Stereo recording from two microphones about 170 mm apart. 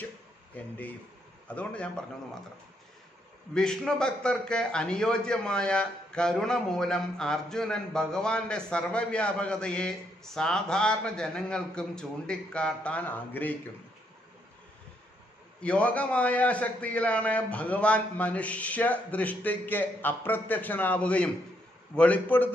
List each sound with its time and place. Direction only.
0.6 s a man's voice: 10° left (ahead or behind)
3.5 s a man's voice: 5° left (ahead or behind)
15.6 s a man's voice: 5° left (ahead or behind)